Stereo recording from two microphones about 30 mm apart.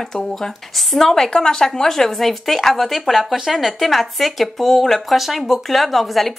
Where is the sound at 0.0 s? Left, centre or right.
Centre.